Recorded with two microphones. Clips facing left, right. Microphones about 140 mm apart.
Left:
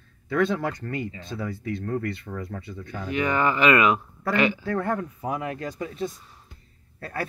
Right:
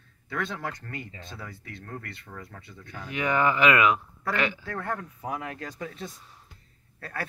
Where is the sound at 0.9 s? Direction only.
10° left (ahead or behind).